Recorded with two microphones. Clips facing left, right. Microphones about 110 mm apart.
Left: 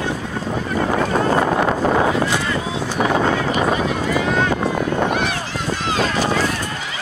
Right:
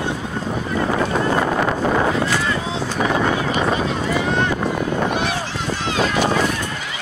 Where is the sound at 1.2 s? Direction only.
30° left (ahead or behind).